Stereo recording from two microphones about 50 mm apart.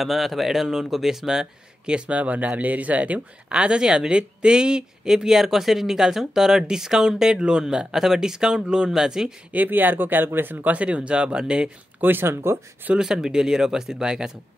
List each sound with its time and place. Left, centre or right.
0.0 s speech: centre
9.5 s speech: right; by 11.7 s centre
12.0 s speech: right
12.9 s speech: centre